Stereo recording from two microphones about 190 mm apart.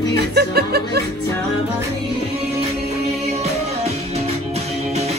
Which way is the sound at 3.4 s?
35° right (ahead or behind).